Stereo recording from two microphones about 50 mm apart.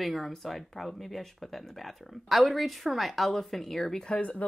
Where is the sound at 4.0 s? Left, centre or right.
Left.